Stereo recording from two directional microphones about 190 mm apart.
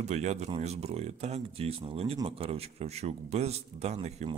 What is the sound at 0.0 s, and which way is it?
A man's voice, 35° right (ahead or behind).